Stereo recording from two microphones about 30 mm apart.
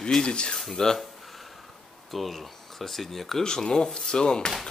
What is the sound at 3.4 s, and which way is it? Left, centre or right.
Rub, left.